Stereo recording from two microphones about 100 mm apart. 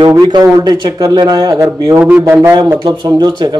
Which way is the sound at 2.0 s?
15° right (ahead or behind).